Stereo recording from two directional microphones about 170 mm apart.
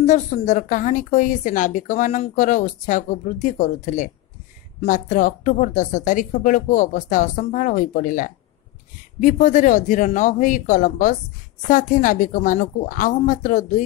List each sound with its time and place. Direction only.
0.0 s a woman's voice: 45° left (ahead or behind)